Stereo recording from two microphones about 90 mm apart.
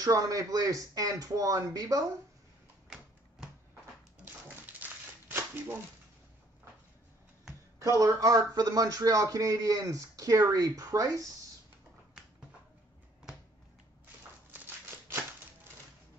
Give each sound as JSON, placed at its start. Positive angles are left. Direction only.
{"t": 0.0, "sound": "speech", "side_deg": -40}
{"t": 2.9, "sound": "a sound", "side_deg": -10}
{"t": 4.2, "sound": "dog", "side_deg": -20}
{"t": 7.8, "sound": "speech", "side_deg": -40}